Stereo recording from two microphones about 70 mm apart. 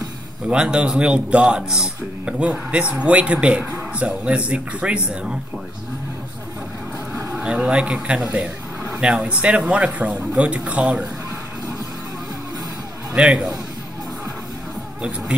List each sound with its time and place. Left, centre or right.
0.5 s a man's voice: centre
7.3 s a man's voice: centre
13.1 s a man's voice: centre
15.0 s a man's voice: centre